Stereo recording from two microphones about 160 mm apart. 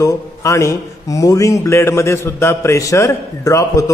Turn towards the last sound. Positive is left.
turn(degrees=20)  # may be behind; listen again after turning